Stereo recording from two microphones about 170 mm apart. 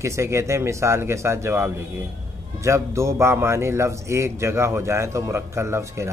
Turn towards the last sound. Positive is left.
turn(degrees=-15)  # may be behind; listen again after turning